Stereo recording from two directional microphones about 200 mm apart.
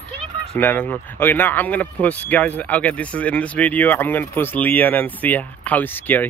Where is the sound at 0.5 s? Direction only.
10° left (ahead or behind).